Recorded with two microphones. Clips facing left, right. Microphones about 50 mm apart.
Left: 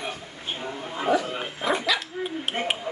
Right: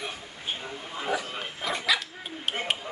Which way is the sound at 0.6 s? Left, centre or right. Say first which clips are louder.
Left 5 dB; left.